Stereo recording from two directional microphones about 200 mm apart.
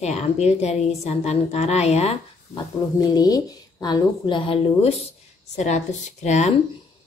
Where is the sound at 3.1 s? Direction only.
20° left (ahead or behind); by 6.5 s 35° left (ahead or behind).